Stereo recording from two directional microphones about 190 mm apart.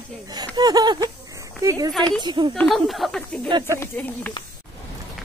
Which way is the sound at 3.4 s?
25° right (ahead or behind).